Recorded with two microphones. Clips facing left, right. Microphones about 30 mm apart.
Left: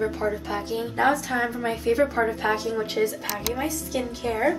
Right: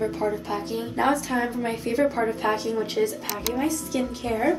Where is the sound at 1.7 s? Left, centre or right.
Centre.